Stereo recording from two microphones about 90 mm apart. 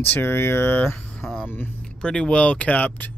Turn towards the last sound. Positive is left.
turn(degrees=15)  # may be behind; listen again after turning